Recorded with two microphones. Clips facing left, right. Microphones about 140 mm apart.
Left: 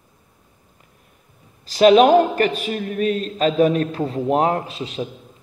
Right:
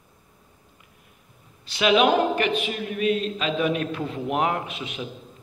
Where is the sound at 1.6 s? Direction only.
40° left (ahead or behind).